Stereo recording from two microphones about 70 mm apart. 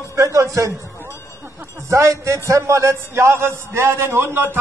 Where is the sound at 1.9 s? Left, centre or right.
Right.